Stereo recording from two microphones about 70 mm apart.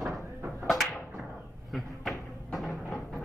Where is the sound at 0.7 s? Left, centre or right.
Centre.